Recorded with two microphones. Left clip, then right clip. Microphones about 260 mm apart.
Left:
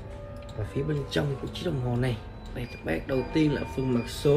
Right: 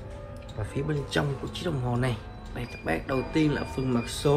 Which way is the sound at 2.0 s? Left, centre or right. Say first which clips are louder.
Right 1 dB; centre.